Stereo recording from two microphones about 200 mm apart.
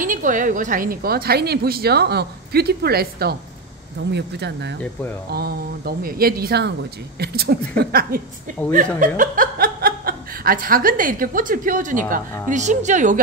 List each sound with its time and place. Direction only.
0.0 s a woman's voice: 40° right (ahead or behind)